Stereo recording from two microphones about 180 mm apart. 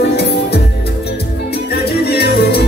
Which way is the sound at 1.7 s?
65° left (ahead or behind).